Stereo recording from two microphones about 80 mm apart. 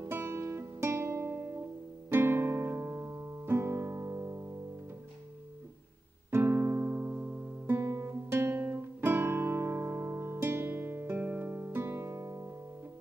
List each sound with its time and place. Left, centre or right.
0.0 s guitar: right
2.0 s music: right
6.3 s music: right
6.9 s music: right
11.8 s music: right